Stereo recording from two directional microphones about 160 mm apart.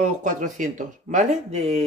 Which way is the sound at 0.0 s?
50° right (ahead or behind).